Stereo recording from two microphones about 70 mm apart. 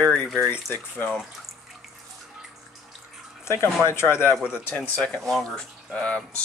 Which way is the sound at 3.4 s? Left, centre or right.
Left.